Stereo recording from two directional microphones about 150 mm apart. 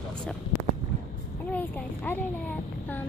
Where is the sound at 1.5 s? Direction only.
10° left (ahead or behind).